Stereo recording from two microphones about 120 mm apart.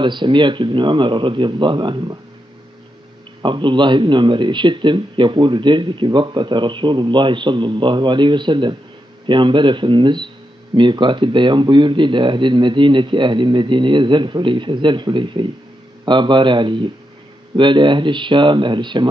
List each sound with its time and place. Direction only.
0.0 s speech: 40° right (ahead or behind)
3.4 s speech: 40° right (ahead or behind)